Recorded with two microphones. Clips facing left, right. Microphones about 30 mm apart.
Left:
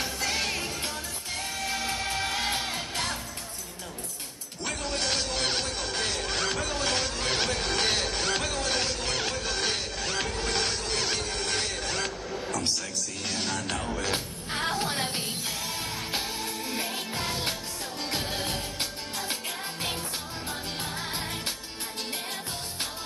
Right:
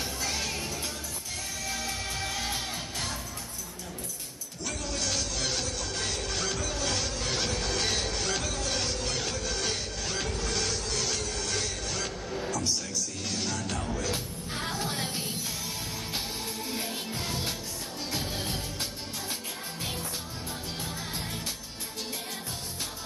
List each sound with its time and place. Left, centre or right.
0.0 s music: left
4.6 s music: left
12.4 s a sound: left
13.2 s music: left
16.7 s music: left
17.1 s music: left